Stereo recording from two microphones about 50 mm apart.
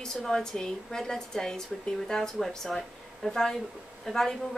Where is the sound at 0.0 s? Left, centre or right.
Centre.